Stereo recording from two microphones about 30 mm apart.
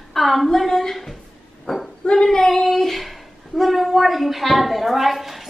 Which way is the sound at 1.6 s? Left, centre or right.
Centre.